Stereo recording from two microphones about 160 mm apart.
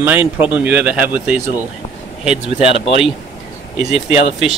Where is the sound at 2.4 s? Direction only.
40° right (ahead or behind).